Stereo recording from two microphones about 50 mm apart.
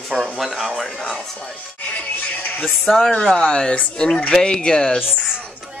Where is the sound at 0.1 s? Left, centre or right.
Centre.